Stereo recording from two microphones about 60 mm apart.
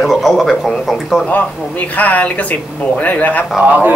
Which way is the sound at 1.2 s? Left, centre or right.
Left.